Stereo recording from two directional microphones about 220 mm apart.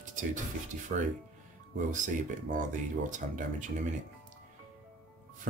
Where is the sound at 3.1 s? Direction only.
35° right (ahead or behind).